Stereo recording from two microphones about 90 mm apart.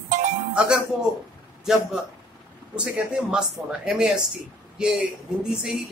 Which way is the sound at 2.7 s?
10° right (ahead or behind).